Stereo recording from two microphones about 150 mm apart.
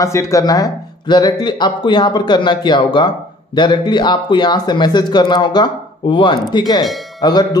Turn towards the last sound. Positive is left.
turn(degrees=25)  # may be behind; listen again after turning